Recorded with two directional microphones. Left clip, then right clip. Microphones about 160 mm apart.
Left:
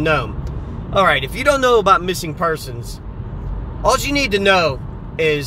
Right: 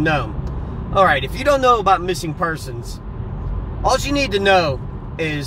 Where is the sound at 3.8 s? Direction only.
45° left (ahead or behind).